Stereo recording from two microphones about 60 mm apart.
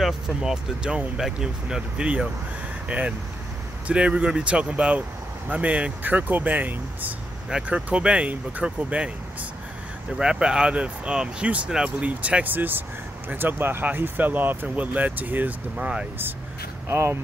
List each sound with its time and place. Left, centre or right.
0.0 s speech: centre
10.1 s speech: centre
12.5 s speech: right
15.8 s speech: centre
16.9 s speech: right